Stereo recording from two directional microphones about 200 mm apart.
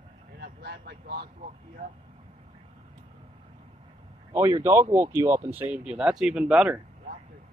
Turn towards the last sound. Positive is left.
turn(degrees=-5)  # may be behind; listen again after turning